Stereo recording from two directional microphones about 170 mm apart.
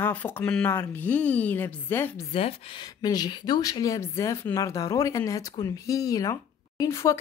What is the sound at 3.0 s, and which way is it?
Speech, 25° left (ahead or behind).